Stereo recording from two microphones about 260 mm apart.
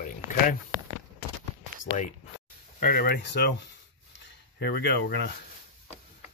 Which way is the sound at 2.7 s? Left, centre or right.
Left.